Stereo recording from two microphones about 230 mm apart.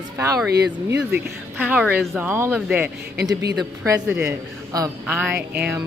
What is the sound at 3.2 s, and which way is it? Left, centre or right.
Speech, centre.